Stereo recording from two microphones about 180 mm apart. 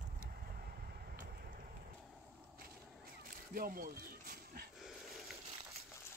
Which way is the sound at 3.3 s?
55° right (ahead or behind).